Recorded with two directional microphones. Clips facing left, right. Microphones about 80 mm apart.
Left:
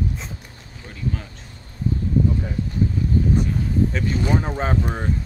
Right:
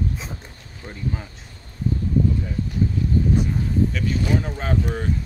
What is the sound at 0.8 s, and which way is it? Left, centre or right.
Speech, right.